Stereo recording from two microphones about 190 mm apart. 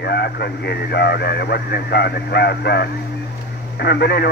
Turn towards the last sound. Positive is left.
turn(degrees=60)  # may be behind; listen again after turning